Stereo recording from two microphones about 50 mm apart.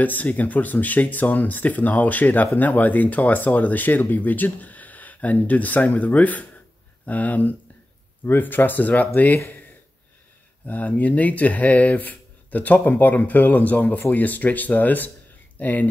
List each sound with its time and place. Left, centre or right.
0.0 s speech: left
10.7 s speech: left